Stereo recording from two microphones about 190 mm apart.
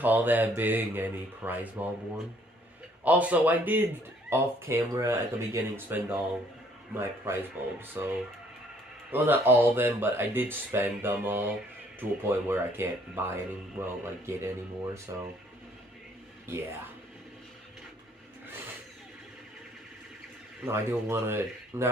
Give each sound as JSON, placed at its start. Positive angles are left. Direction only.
{"t": 0.0, "sound": "speech", "side_deg": -10}
{"t": 3.0, "sound": "speech", "side_deg": -10}
{"t": 20.6, "sound": "speech", "side_deg": -15}